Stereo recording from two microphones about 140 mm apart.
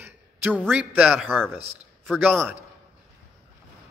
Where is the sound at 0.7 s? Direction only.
10° right (ahead or behind).